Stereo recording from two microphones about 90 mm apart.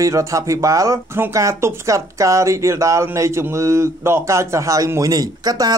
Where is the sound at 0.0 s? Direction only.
35° right (ahead or behind).